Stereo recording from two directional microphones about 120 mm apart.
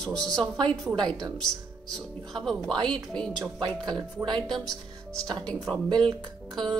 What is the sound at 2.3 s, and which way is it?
A woman's voice, 5° left (ahead or behind).